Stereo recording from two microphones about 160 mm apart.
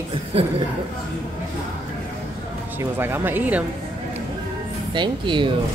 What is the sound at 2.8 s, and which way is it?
Speech, 15° right (ahead or behind).